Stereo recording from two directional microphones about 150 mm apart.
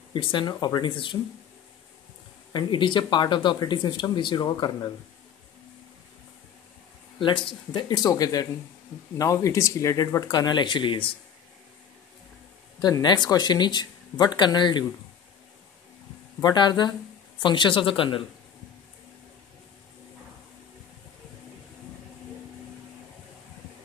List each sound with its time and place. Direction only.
0.1 s speech: 35° left (ahead or behind)
2.5 s speech: 30° left (ahead or behind)
7.2 s speech: 35° left (ahead or behind)
12.8 s speech: 30° left (ahead or behind)
16.3 s speech: 25° left (ahead or behind)